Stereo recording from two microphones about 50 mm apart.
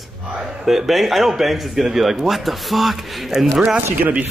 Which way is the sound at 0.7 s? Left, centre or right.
Centre.